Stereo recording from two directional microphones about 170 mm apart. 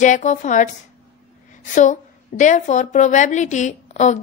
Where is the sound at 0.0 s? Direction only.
45° left (ahead or behind).